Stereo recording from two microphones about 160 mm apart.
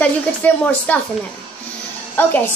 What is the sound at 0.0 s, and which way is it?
Speech, 10° left (ahead or behind).